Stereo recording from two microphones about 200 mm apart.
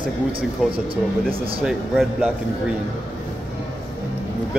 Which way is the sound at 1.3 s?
25° right (ahead or behind).